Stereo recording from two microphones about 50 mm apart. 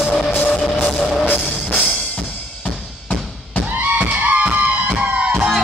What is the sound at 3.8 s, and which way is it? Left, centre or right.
Music, right.